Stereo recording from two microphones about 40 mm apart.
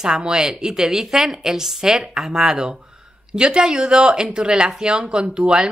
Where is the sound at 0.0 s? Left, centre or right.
Centre.